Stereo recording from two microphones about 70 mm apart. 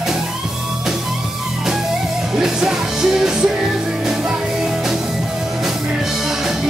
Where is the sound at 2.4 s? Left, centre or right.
Centre.